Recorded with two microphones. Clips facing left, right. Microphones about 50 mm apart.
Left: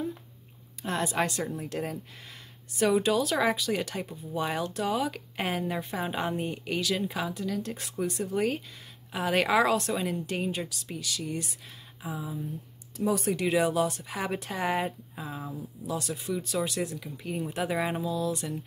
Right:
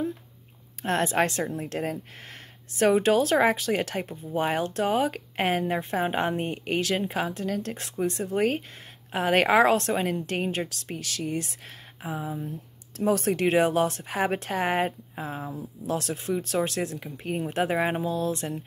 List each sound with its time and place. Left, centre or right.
0.8 s speech: right
12.9 s speech: right
15.9 s speech: right